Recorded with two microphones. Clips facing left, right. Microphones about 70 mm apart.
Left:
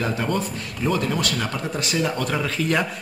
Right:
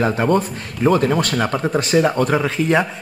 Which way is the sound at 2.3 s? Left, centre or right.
Centre.